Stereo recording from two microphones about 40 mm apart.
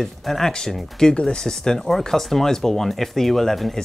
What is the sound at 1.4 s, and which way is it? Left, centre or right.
Speech, centre.